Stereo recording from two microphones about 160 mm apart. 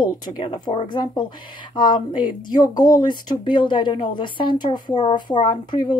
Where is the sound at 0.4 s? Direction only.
35° left (ahead or behind).